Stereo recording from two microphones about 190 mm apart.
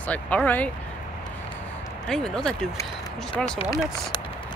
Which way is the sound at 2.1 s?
5° left (ahead or behind).